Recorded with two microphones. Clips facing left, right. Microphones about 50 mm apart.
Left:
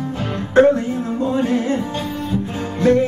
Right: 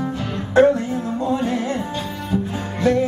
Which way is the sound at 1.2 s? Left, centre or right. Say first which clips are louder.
Left 4 dB; left.